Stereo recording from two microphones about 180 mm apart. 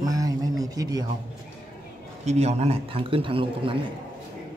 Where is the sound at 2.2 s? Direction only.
35° right (ahead or behind).